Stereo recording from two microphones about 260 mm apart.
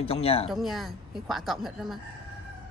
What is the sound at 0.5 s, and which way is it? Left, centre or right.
Speech, centre.